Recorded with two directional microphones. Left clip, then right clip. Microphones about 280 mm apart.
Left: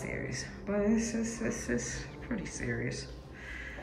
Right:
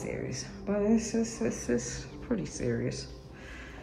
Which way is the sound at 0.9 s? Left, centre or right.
Right.